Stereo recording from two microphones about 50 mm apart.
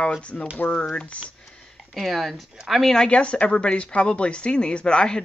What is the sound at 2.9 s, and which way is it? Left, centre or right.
Speech, left.